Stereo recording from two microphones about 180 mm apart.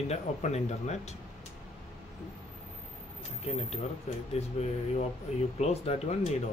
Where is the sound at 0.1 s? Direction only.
40° left (ahead or behind).